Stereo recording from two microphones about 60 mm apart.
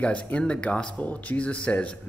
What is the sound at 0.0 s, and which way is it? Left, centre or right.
Speech, left.